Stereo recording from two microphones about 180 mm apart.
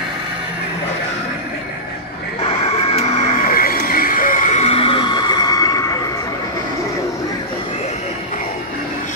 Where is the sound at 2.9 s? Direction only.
35° left (ahead or behind).